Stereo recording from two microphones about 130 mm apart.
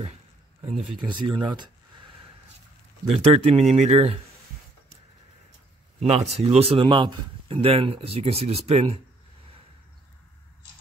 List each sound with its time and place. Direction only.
1.0 s speech: 35° right (ahead or behind)
3.1 s a man's voice: 50° right (ahead or behind)
5.9 s a man's voice: 50° right (ahead or behind)